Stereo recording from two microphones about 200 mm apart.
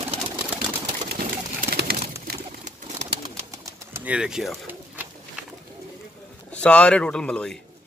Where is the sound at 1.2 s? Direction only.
50° right (ahead or behind).